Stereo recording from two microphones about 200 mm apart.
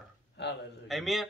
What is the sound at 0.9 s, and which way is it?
Speech, centre (ahead or behind).